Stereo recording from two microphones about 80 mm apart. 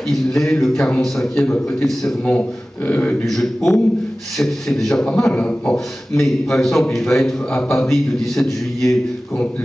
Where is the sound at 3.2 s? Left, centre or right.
Centre.